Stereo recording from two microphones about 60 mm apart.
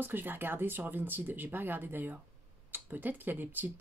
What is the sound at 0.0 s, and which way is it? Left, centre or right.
Speech, right.